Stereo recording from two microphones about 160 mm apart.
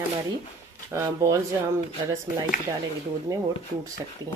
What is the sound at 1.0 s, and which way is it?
Speech, 20° right (ahead or behind).